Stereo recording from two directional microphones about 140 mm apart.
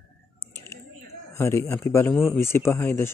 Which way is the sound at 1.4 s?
20° left (ahead or behind).